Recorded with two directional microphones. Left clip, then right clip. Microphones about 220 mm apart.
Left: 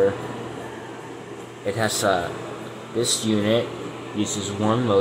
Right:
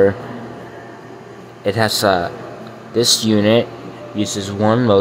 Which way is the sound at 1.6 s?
25° right (ahead or behind).